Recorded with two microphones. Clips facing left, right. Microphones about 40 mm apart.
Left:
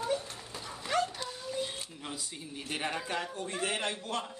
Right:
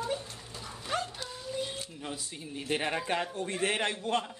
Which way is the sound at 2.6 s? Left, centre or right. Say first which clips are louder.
Right 4 dB; centre.